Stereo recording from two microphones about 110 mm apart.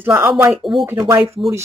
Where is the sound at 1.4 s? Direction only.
50° right (ahead or behind).